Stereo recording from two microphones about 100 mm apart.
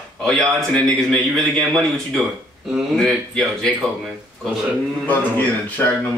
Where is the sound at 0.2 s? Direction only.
5° left (ahead or behind).